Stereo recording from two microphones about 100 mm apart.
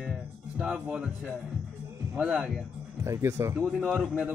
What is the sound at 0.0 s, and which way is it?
A man's voice, 10° right (ahead or behind).